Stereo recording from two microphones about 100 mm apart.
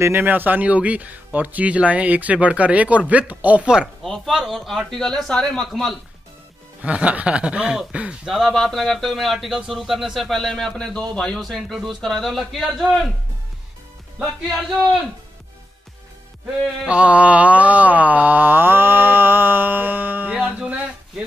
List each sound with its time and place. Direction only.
0.0 s mantra: 20° right (ahead or behind)
4.0 s speech: centre (ahead or behind)
6.8 s mantra: 15° right (ahead or behind)
8.3 s speech: centre (ahead or behind)
16.8 s mantra: 10° right (ahead or behind)